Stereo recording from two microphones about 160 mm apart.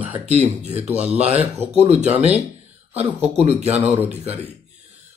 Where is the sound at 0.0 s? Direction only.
10° right (ahead or behind).